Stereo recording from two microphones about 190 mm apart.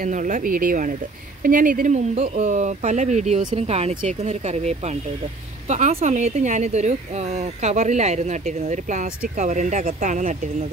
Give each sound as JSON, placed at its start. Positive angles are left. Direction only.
{"t": 0.0, "sound": "speech", "side_deg": -45}